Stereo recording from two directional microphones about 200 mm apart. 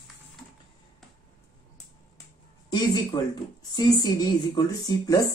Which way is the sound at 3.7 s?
20° left (ahead or behind).